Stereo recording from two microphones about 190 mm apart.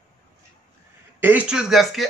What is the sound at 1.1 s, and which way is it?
Speech, 10° right (ahead or behind).